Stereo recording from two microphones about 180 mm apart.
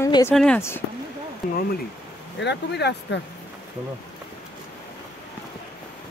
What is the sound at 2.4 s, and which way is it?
Speech, 70° left (ahead or behind).